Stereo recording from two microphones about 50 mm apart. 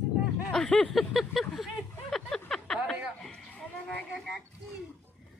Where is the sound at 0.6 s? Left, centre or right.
Left.